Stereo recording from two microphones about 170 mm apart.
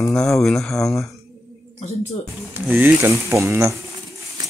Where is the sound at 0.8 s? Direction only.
20° left (ahead or behind).